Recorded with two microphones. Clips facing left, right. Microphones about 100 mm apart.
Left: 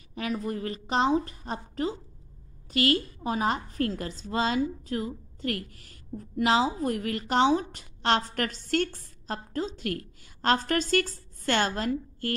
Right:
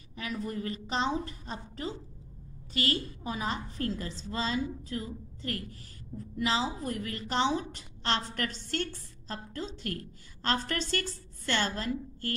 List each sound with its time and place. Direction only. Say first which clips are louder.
0.2 s a woman's voice: left 4 dB; 40° left (ahead or behind)